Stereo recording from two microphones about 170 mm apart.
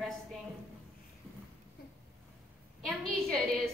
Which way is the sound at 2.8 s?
Centre (ahead or behind).